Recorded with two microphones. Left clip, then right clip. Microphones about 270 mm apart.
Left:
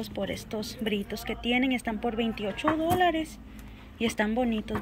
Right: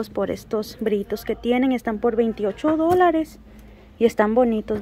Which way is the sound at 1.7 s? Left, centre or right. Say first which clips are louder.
Right 7 dB; right.